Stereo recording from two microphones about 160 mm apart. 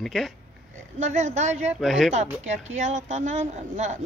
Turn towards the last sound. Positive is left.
turn(degrees=-45)  # may be behind; listen again after turning